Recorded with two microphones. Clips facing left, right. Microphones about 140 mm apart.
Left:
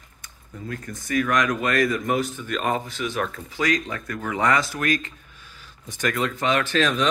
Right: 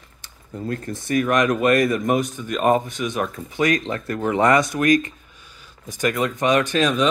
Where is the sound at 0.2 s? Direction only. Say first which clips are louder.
Right 7 dB; 35° right (ahead or behind).